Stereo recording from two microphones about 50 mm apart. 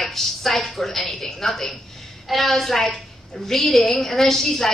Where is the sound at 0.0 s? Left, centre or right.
Centre.